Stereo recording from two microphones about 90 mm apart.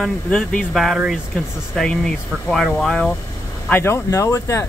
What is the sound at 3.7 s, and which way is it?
Speech, 25° left (ahead or behind).